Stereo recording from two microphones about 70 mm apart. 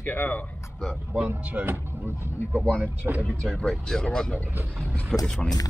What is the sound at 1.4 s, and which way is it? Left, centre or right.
Speech, right.